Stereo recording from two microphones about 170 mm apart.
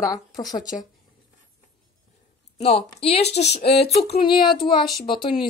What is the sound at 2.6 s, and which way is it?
A woman's voice, 35° left (ahead or behind).